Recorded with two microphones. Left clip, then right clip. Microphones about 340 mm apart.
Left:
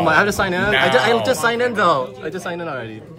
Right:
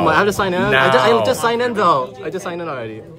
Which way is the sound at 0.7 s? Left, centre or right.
Centre.